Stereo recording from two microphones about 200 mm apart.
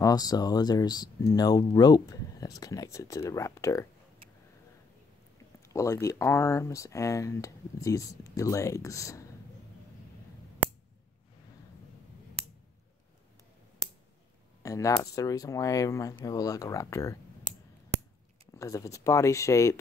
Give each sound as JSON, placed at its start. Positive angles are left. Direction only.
{"t": 0.0, "sound": "speech", "side_deg": 20}
{"t": 5.7, "sound": "speech", "side_deg": 15}
{"t": 14.6, "sound": "speech", "side_deg": 15}
{"t": 18.5, "sound": "speech", "side_deg": 15}